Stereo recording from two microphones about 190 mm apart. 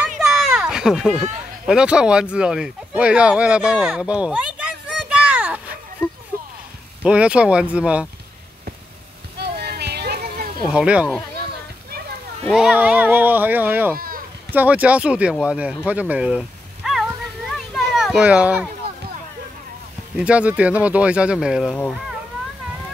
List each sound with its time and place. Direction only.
0.2 s a sound: centre (ahead or behind)
1.7 s speech: 5° right (ahead or behind)
7.0 s speech: 5° right (ahead or behind)
9.4 s a sound: 60° right (ahead or behind)
10.7 s speech: 5° right (ahead or behind)
12.4 s speech: centre (ahead or behind)
13.9 s a sound: 50° right (ahead or behind)
14.5 s speech: 10° right (ahead or behind)
20.2 s speech: 5° right (ahead or behind)